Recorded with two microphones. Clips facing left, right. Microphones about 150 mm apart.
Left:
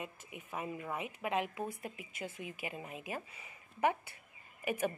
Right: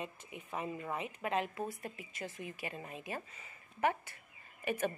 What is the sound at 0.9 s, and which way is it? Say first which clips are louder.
Speech: even; 10° left (ahead or behind).